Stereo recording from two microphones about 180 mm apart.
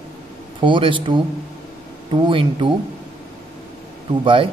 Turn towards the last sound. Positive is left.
turn(degrees=-30)  # may be behind; listen again after turning